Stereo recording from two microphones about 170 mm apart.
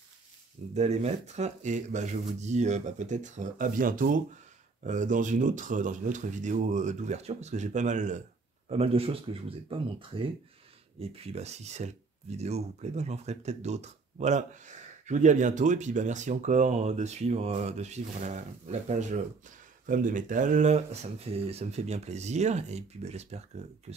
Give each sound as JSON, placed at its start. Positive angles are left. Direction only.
{"t": 0.7, "sound": "speech", "side_deg": -40}